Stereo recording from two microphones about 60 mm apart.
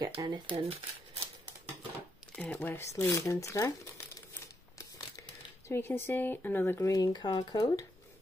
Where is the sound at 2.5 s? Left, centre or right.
Left.